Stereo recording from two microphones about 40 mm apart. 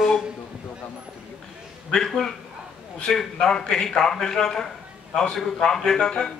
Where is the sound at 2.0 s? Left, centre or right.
Centre.